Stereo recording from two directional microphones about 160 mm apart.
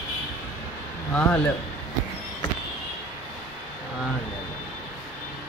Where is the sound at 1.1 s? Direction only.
10° left (ahead or behind).